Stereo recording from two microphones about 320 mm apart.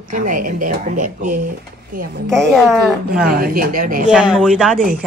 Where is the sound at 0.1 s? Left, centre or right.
Right.